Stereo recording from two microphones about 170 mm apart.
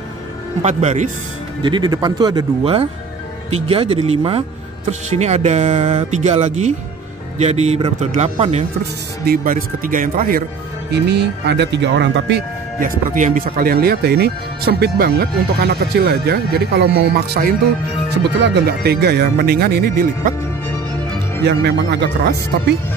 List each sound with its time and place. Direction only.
0.6 s speech: 40° right (ahead or behind)
1.6 s speech: 25° right (ahead or behind)
2.6 s speech: 35° right (ahead or behind)
9.2 s speech: 60° right (ahead or behind)
10.9 s speech: 80° right
12.8 s speech: 50° right (ahead or behind)
18.4 s speech: 75° right (ahead or behind)
21.4 s speech: 90° right